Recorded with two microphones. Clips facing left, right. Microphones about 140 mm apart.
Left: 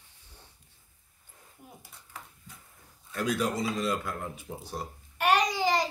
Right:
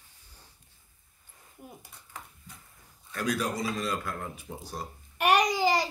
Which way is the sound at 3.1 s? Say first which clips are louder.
Left 1 dB; 20° left (ahead or behind).